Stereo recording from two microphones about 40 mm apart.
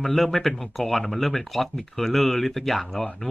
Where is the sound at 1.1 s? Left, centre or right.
Centre.